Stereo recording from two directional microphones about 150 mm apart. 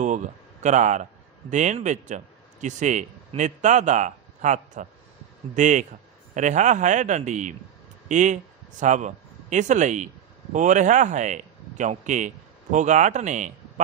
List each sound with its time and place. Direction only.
0.0 s a man's voice: 55° right (ahead or behind)